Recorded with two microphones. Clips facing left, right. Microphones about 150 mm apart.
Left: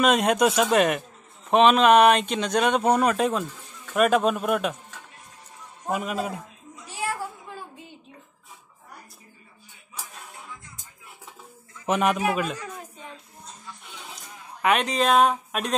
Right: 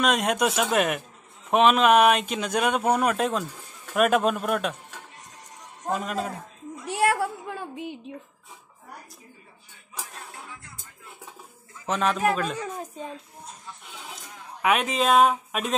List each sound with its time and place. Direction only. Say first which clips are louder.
0.0 s speech: left 3 dB; centre (ahead or behind)
5.9 s a man's voice: left 1 dB; 5° left (ahead or behind)
6.8 s a sound: right 7 dB; 70° right (ahead or behind)
11.8 s a man's voice: left 3 dB; 15° left (ahead or behind)
14.6 s speech: left 1 dB; 5° right (ahead or behind)